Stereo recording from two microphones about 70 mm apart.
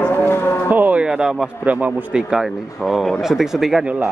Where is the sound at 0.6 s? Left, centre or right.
Right.